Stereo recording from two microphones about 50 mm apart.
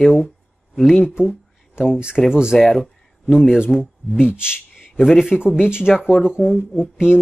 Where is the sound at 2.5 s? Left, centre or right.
Centre.